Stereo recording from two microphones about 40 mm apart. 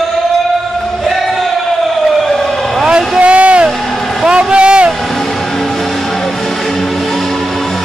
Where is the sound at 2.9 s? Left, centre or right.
Right.